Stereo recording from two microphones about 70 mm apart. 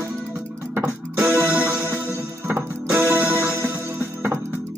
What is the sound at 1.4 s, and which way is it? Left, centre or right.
Music, right.